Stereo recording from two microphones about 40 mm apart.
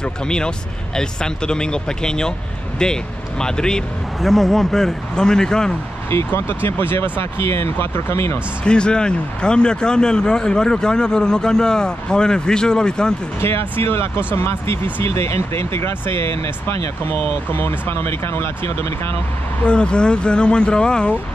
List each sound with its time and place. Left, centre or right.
0.0 s speech: left
4.2 s a man's voice: centre
6.0 s speech: left
8.6 s speech: left
13.4 s speech: left
19.6 s speech: left